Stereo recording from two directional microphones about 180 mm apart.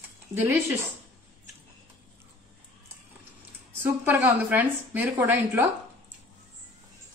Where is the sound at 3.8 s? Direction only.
10° right (ahead or behind).